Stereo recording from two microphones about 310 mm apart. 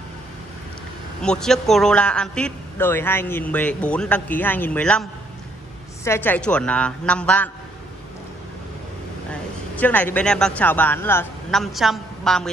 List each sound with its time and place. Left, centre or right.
1.2 s a man's voice: centre
6.0 s a man's voice: centre
9.3 s a man's voice: centre